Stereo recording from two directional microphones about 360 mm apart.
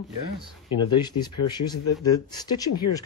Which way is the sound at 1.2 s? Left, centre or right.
Centre.